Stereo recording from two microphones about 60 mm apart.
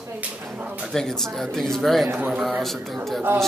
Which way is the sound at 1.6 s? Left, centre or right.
Centre.